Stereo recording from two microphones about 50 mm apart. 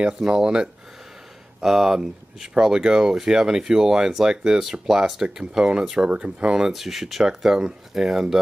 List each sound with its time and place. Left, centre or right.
0.0 s speech: centre
6.7 s speech: centre